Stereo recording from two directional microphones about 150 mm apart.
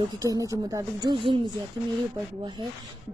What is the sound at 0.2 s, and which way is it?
Speech, 20° right (ahead or behind).